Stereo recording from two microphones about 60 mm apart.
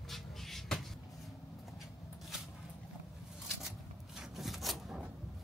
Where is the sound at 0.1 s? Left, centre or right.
Centre.